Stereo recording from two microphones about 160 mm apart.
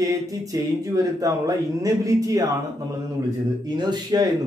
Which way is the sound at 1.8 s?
20° right (ahead or behind).